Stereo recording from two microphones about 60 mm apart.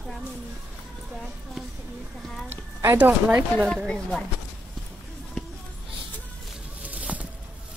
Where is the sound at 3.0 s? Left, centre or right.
Right.